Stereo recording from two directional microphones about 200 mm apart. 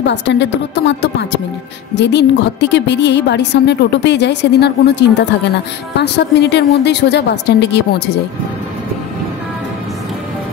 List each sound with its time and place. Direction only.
0.0 s a woman's voice: 60° left (ahead or behind)